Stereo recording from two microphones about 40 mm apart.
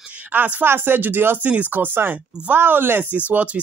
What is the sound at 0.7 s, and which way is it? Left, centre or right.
Speech, right.